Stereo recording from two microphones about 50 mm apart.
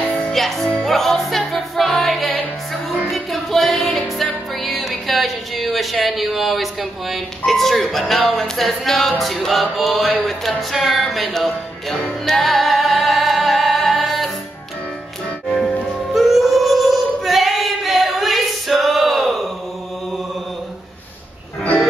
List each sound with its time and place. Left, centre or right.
0.0 s music: centre
0.3 s music: centre
4.6 s speech: centre
9.2 s music: centre
16.1 s female singing: centre